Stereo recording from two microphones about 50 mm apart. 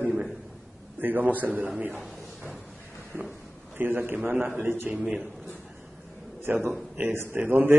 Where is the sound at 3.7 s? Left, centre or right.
Right.